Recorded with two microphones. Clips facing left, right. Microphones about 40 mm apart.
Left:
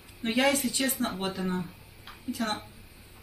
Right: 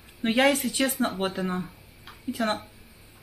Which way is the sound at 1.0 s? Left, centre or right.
Right.